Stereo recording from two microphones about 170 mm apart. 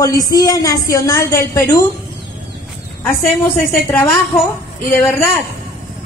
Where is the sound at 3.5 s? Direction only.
Centre (ahead or behind).